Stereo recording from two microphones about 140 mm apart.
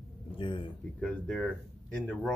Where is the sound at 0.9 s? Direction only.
10° left (ahead or behind).